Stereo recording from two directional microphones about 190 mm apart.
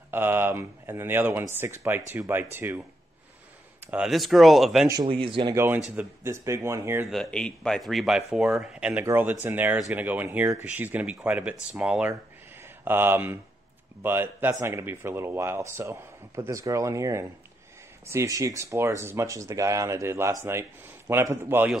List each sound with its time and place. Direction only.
0.1 s speech: 10° right (ahead or behind)
3.8 s a man's voice: 5° right (ahead or behind)
4.8 s speech: 25° right (ahead or behind)
5.5 s speech: 15° right (ahead or behind)
7.1 s a man's voice: 5° left (ahead or behind)